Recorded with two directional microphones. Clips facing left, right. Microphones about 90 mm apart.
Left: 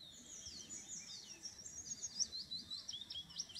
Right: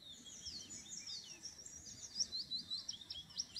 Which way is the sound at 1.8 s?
55° right (ahead or behind).